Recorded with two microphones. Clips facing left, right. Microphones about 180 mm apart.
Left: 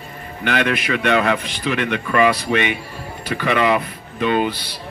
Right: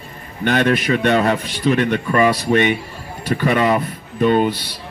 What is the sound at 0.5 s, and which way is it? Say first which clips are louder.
A man's voice: right 4 dB; 40° right (ahead or behind).